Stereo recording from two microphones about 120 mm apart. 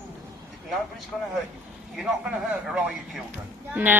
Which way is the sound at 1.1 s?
10° left (ahead or behind).